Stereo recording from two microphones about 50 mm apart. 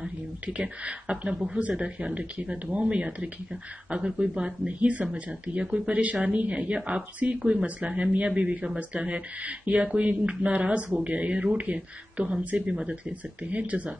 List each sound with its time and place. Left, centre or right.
0.5 s speech: right